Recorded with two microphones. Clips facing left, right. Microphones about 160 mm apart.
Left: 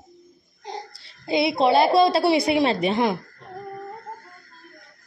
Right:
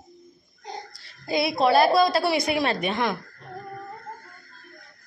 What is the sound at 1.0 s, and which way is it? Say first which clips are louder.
A woman's voice: left 3 dB; 25° left (ahead or behind).